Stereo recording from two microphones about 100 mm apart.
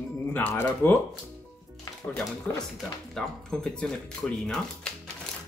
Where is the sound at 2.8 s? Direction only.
5° left (ahead or behind).